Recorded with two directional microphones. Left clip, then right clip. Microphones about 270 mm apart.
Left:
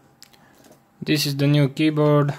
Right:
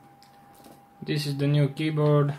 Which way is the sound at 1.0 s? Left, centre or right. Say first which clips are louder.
Left 8 dB; left.